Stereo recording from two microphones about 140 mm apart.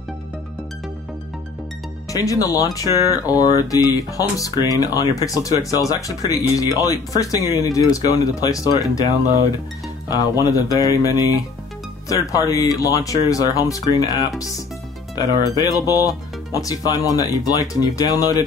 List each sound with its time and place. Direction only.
2.1 s speech: 25° left (ahead or behind)
10.0 s speech: 25° left (ahead or behind)
12.3 s speech: 25° left (ahead or behind)